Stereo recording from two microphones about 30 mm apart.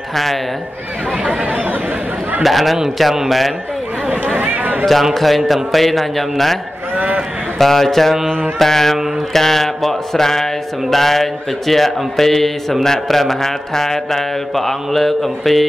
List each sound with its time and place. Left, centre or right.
0.1 s speech: centre
1.2 s speech: right
2.4 s a man's voice: centre
4.4 s a sound: right
5.1 s a man's voice: centre